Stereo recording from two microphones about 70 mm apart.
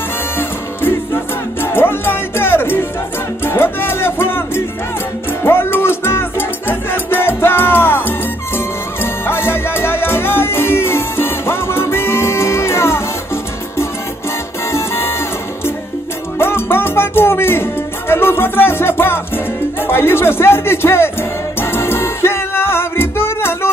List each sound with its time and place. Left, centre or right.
0.4 s music: left
14.7 s music: left
16.3 s music: left